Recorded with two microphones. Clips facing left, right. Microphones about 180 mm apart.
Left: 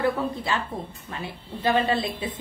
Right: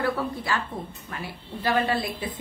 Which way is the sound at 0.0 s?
20° left (ahead or behind).